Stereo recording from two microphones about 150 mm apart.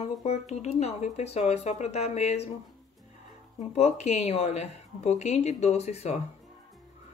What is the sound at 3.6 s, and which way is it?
Speech, 45° left (ahead or behind).